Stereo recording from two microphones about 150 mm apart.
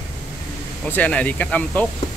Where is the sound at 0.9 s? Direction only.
10° left (ahead or behind).